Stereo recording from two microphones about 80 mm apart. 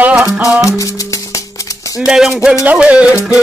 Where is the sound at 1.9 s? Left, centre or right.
Centre.